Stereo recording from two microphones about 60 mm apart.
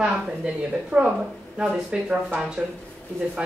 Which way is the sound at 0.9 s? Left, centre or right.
Right.